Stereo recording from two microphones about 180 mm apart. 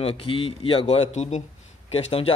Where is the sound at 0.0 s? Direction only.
30° left (ahead or behind).